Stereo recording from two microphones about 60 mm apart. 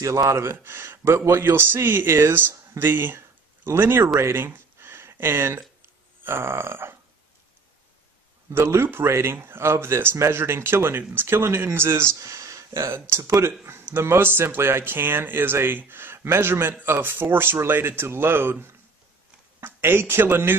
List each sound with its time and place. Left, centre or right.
0.0 s speech: right
4.2 s a sound: right
6.2 s speech: right
8.5 s speech: right
12.2 s a sound: right
13.7 s speech: right